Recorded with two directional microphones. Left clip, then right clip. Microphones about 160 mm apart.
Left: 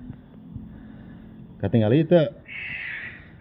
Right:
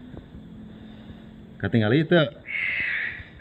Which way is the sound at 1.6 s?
50° left (ahead or behind).